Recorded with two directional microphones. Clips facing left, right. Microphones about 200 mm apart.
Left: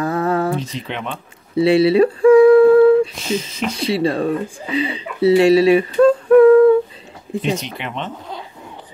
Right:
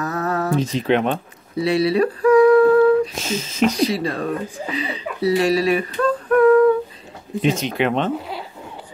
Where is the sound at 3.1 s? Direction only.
45° right (ahead or behind).